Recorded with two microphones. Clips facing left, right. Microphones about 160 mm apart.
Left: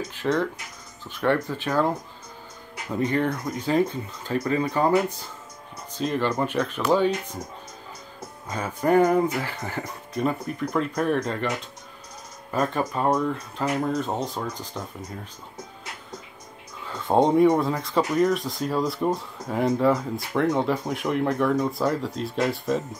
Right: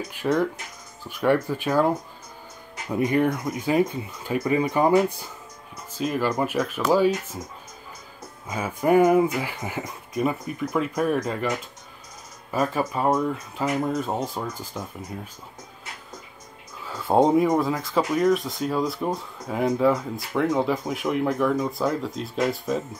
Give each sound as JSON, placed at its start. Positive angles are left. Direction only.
{"t": 0.1, "sound": "speech", "side_deg": -10}
{"t": 8.5, "sound": "speech", "side_deg": -10}
{"t": 16.8, "sound": "speech", "side_deg": -5}